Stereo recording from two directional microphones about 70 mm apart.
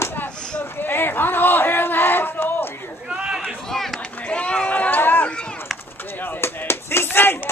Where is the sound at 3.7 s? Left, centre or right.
Centre.